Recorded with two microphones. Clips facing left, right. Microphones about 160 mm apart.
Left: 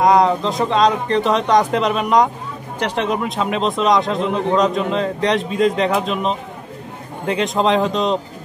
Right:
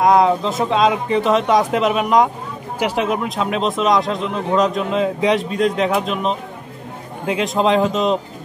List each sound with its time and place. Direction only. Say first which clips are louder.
0.0 s speech: even; centre (ahead or behind)